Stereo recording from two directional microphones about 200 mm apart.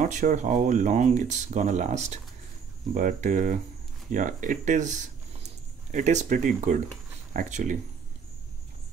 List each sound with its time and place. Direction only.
0.0 s speech: 40° right (ahead or behind)